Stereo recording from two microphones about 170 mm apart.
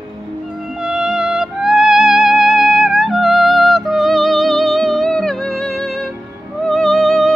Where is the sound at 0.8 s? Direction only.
5° right (ahead or behind).